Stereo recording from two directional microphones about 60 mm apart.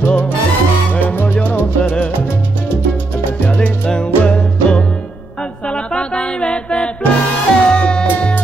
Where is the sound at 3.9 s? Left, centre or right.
Centre.